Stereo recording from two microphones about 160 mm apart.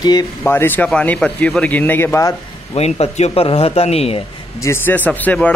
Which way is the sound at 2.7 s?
40° left (ahead or behind).